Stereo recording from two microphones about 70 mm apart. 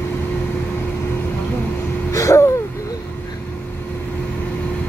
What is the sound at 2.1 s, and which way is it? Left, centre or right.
Gasp, left.